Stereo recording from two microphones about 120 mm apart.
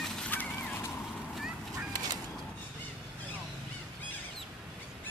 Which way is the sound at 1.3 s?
5° right (ahead or behind).